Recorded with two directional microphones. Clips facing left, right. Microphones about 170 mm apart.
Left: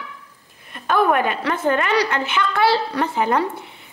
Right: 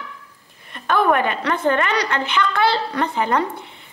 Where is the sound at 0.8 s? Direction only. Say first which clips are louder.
Even; 10° left (ahead or behind).